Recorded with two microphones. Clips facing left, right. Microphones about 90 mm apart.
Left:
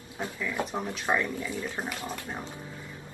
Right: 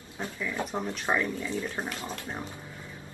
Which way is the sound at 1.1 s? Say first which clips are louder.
Even; 5° left (ahead or behind).